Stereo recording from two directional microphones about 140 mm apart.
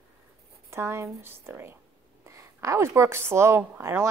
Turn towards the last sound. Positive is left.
turn(degrees=-15)  # may be behind; listen again after turning